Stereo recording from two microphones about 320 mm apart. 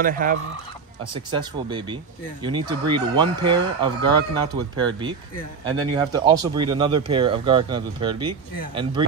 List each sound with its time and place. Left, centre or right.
0.0 s fowl: right
1.1 s speech: centre